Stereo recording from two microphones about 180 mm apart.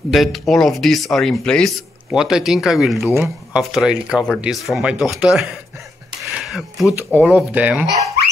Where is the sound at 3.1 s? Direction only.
15° right (ahead or behind).